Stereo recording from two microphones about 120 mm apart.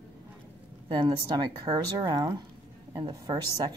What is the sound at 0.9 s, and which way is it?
Speech, 40° right (ahead or behind).